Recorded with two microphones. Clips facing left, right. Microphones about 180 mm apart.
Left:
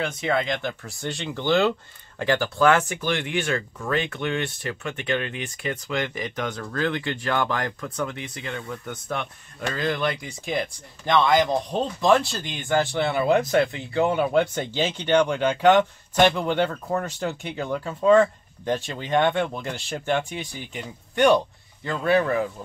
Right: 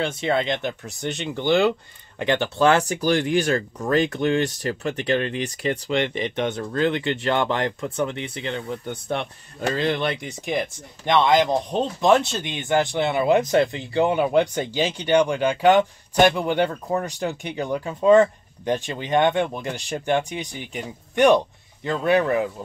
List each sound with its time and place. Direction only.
0.0 s speech: 30° right (ahead or behind)